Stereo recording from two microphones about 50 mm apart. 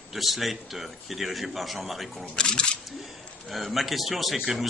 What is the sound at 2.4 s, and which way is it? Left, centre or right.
Speech, centre.